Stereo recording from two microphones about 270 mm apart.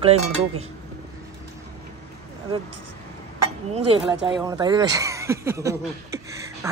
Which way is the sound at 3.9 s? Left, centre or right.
Centre.